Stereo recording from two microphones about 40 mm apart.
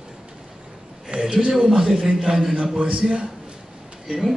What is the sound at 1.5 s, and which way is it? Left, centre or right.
A man's voice, centre.